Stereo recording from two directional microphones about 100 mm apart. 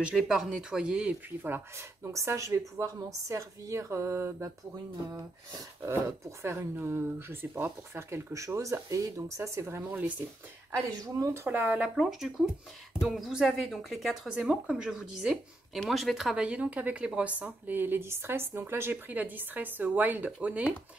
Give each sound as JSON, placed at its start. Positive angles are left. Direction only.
{"t": 0.1, "sound": "speech", "side_deg": -5}
{"t": 1.5, "sound": "speech", "side_deg": -30}
{"t": 5.8, "sound": "speech", "side_deg": -25}
{"t": 9.8, "sound": "speech", "side_deg": -15}
{"t": 10.7, "sound": "speech", "side_deg": -30}
{"t": 11.4, "sound": "speech", "side_deg": -20}
{"t": 12.0, "sound": "speech", "side_deg": 0}